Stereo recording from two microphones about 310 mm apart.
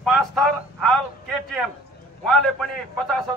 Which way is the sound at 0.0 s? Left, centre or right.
Centre.